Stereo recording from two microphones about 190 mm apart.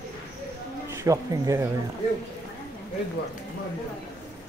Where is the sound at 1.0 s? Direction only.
15° right (ahead or behind).